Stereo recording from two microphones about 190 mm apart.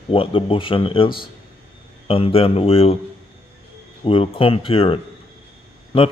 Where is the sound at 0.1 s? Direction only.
30° left (ahead or behind).